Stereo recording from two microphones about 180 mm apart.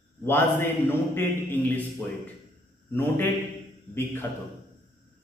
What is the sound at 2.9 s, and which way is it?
Speech, 10° left (ahead or behind).